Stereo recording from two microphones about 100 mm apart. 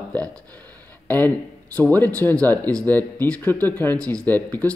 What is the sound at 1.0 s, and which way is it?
Speech, 15° left (ahead or behind).